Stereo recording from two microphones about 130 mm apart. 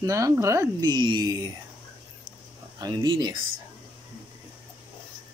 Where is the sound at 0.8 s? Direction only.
35° right (ahead or behind).